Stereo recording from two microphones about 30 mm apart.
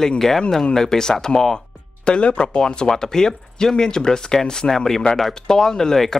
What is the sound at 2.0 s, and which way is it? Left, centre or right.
Speech, left.